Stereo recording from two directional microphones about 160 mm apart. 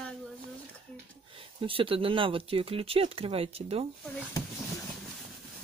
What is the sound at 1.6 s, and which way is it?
Speech, 35° right (ahead or behind).